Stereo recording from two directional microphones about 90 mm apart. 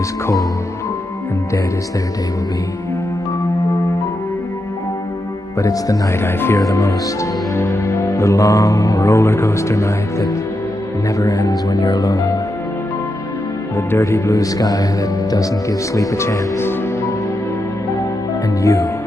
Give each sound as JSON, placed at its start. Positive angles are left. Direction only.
{"t": 5.6, "sound": "speech", "side_deg": 40}
{"t": 6.2, "sound": "speech", "side_deg": 25}
{"t": 7.5, "sound": "music", "side_deg": 30}
{"t": 8.1, "sound": "speech", "side_deg": 35}
{"t": 13.7, "sound": "speech", "side_deg": 30}
{"t": 15.9, "sound": "speech", "side_deg": 35}
{"t": 18.6, "sound": "speech", "side_deg": 35}